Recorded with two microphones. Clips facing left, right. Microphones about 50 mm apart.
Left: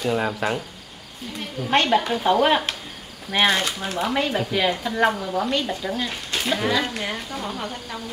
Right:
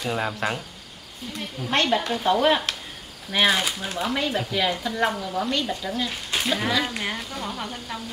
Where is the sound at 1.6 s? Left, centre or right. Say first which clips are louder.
Left 3 dB; centre.